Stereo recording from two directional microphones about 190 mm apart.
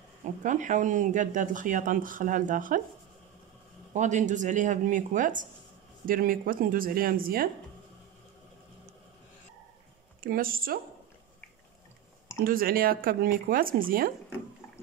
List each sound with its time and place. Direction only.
0.2 s speech: 40° right (ahead or behind)
3.9 s speech: 40° right (ahead or behind)
10.2 s speech: 50° right (ahead or behind)
12.4 s speech: 50° right (ahead or behind)